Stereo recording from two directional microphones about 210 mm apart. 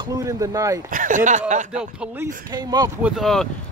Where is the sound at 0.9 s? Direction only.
40° right (ahead or behind).